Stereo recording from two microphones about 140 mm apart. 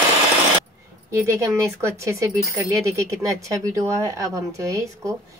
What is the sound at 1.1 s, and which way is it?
Speech, 20° right (ahead or behind).